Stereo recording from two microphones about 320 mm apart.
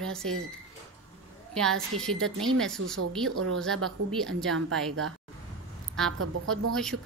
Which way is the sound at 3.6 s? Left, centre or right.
Centre.